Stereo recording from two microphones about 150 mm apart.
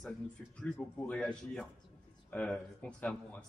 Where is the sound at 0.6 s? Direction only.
5° left (ahead or behind).